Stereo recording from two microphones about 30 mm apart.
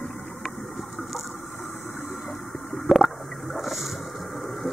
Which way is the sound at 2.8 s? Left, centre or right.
Centre.